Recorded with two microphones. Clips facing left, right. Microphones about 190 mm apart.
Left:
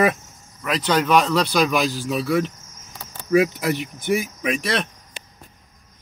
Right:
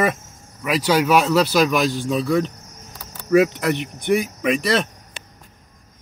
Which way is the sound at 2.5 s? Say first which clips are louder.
Right 3 dB; 65° right (ahead or behind).